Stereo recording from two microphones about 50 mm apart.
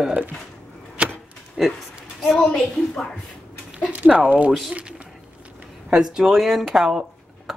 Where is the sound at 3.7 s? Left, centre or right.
Right.